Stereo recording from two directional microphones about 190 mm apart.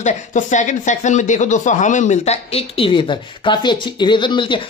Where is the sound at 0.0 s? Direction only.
40° left (ahead or behind).